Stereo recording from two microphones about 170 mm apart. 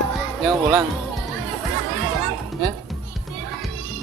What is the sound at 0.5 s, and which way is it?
Speech, 20° right (ahead or behind).